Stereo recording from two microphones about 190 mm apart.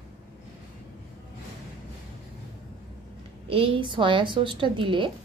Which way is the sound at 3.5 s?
30° right (ahead or behind).